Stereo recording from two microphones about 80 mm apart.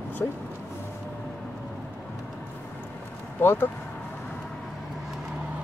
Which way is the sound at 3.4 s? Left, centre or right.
Left.